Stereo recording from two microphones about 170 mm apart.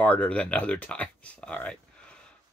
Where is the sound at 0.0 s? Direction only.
10° left (ahead or behind).